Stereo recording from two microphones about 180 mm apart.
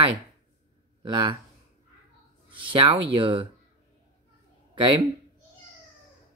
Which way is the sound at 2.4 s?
30° right (ahead or behind).